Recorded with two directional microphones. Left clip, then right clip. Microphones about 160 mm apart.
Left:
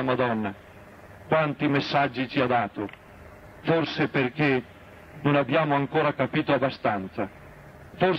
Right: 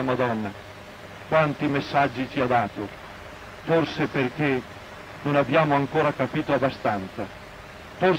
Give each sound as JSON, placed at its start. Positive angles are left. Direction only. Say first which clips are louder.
{"t": 0.0, "sound": "a man's voice", "louder": "even", "side_deg": 40}